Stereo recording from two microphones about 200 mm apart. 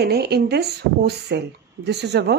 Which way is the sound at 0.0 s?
55° right (ahead or behind).